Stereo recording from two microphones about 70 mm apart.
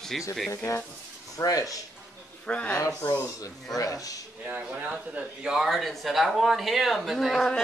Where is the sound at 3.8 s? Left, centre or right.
Left.